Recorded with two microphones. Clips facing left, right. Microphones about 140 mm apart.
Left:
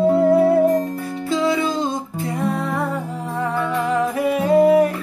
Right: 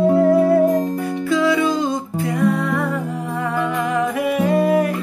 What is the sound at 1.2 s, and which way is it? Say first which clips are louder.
Music: right 2 dB; 25° left (ahead or behind).